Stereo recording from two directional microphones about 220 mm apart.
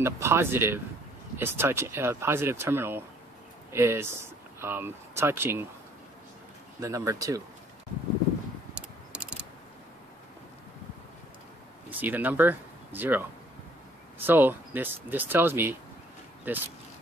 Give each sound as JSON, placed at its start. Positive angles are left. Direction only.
{"t": 0.0, "sound": "speech", "side_deg": -10}
{"t": 6.8, "sound": "speech", "side_deg": -15}
{"t": 8.7, "sound": "mechanisms", "side_deg": -5}
{"t": 11.9, "sound": "speech", "side_deg": -10}